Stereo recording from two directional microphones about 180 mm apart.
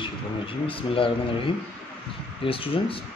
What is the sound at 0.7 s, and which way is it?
Speech, 30° left (ahead or behind).